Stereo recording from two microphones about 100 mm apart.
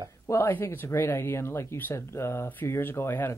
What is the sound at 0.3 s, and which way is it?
Speech, 25° left (ahead or behind).